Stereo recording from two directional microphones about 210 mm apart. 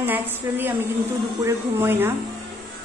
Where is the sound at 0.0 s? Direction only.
10° right (ahead or behind).